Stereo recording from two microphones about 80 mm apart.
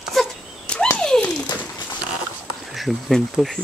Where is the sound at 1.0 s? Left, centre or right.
Centre.